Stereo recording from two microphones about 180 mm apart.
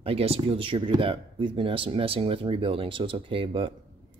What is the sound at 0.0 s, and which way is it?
Speech, 35° right (ahead or behind).